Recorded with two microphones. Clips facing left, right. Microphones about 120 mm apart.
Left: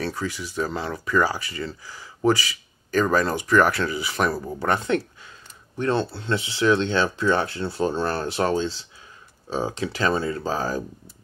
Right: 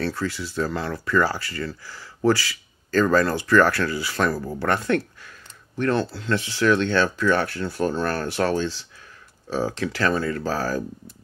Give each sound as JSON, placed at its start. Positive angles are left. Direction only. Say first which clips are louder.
{"t": 0.0, "sound": "speech", "louder": "right 2 dB", "side_deg": 15}